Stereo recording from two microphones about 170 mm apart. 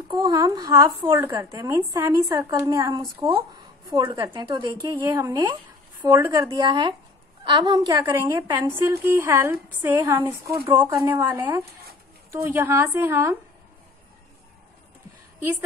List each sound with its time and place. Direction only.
0.1 s a woman's voice: 25° right (ahead or behind)